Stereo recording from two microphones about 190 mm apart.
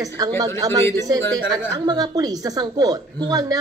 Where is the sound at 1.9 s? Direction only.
20° right (ahead or behind).